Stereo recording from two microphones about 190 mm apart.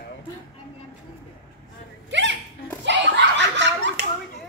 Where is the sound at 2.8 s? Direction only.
70° right (ahead or behind).